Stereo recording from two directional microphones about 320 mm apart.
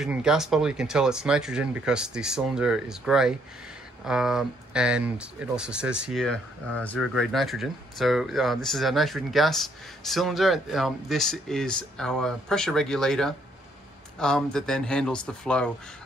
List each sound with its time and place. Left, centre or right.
0.0 s speech: centre